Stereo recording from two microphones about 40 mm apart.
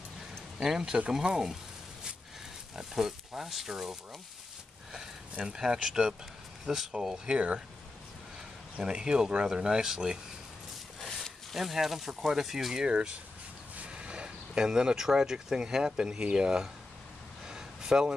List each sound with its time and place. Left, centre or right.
0.6 s speech: centre
2.7 s speech: centre
5.4 s speech: centre
7.3 s speech: right
8.7 s speech: right
11.5 s speech: centre
12.7 s speech: right
17.5 s a sound: centre